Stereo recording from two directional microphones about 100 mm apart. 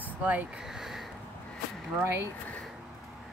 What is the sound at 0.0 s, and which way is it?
Speech, 15° right (ahead or behind).